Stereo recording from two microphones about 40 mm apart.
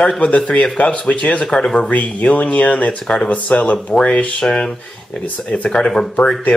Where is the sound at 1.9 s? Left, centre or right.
Left.